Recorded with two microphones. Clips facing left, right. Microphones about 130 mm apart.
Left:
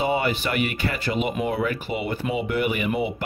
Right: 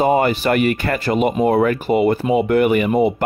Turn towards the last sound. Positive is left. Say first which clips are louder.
# right 9 dB
turn(degrees=-50)  # may be behind; listen again after turning